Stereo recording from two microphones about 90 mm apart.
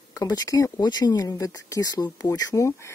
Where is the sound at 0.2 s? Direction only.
40° left (ahead or behind).